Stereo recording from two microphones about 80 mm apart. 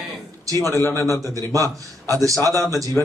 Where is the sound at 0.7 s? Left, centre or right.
Left.